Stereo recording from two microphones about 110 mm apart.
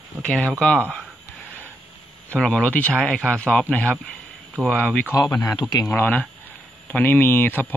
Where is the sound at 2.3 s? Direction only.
5° left (ahead or behind).